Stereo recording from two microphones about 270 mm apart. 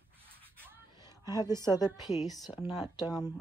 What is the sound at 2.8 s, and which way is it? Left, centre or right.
Speech, centre.